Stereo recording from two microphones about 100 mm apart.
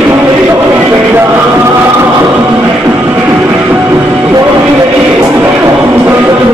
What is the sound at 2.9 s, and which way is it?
Music, 25° right (ahead or behind).